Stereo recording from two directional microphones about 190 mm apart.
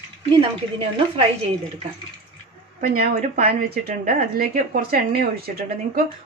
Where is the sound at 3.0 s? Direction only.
45° right (ahead or behind).